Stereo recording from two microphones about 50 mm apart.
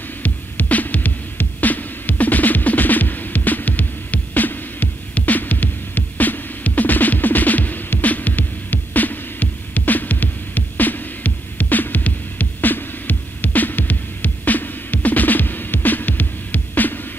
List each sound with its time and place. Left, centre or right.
0.2 s music: left